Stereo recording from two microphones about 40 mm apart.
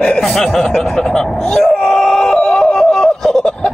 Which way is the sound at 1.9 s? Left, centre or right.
Centre.